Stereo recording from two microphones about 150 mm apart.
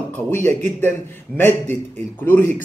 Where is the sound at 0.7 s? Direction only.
15° left (ahead or behind).